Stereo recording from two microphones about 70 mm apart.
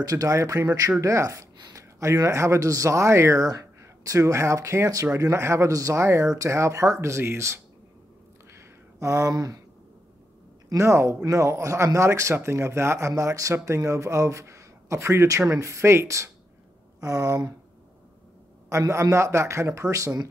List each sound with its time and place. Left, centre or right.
0.0 s speech: right
3.4 s speech: right
5.7 s speech: right
8.5 s a sound: right
9.3 s speech: right
10.7 s speech: right
17.0 s speech: right
18.7 s speech: right